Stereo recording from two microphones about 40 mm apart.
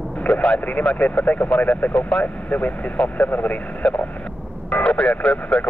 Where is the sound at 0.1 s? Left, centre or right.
Left.